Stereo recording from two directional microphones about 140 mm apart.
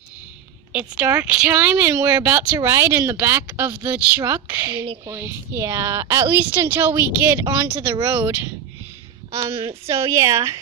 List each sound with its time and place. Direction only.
0.7 s speech: 10° right (ahead or behind)
9.4 s speech: 40° right (ahead or behind)
9.8 s speech: 20° right (ahead or behind)